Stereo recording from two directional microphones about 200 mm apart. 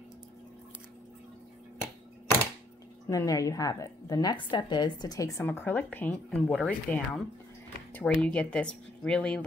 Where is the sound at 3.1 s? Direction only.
15° left (ahead or behind).